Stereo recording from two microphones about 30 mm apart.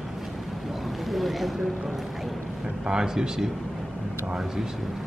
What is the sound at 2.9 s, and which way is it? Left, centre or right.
Speech, right.